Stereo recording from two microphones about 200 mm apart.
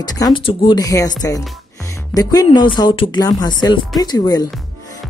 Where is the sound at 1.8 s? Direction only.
20° left (ahead or behind).